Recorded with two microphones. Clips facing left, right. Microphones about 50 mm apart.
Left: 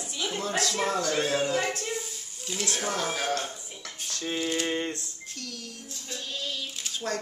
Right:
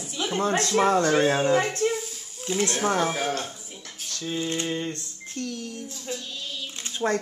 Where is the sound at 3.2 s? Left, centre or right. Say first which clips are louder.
Right 2 dB; centre.